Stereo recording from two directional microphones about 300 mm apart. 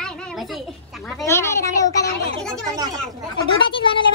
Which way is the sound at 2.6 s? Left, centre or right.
Centre.